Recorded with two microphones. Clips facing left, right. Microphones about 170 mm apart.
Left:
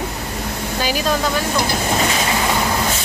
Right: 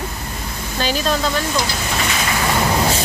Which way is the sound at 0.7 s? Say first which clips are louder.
Right 1 dB; 10° left (ahead or behind).